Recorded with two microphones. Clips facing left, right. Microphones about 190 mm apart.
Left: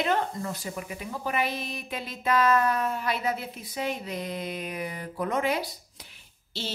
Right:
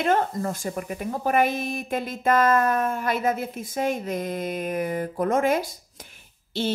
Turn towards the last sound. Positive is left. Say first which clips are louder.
# right 10 dB
turn(degrees=-50)  # may be behind; listen again after turning